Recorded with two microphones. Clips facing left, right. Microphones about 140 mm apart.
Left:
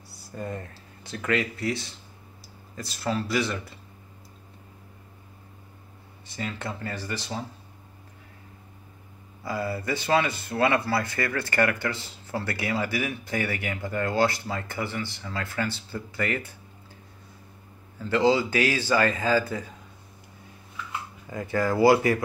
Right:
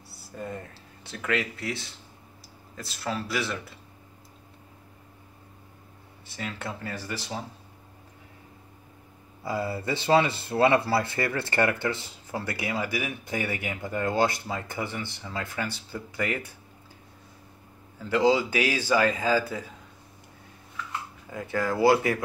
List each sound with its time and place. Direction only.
0.4 s speech: centre (ahead or behind)
6.2 s speech: 5° right (ahead or behind)
9.4 s speech: 25° right (ahead or behind)
18.0 s a man's voice: 10° right (ahead or behind)
21.3 s speech: centre (ahead or behind)